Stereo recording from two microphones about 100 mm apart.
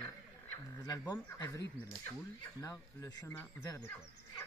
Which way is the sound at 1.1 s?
40° left (ahead or behind).